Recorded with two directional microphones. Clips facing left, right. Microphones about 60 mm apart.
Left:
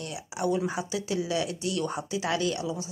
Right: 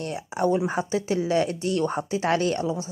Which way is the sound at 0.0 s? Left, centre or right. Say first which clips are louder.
Right 6 dB; right.